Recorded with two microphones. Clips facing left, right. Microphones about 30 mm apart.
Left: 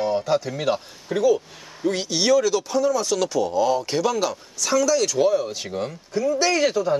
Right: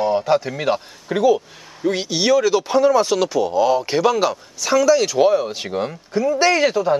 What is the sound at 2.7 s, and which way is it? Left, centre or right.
Speech, right.